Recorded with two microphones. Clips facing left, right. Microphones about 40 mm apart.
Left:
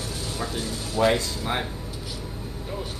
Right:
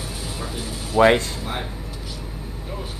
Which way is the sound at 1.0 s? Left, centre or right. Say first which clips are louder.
Right 6 dB; right.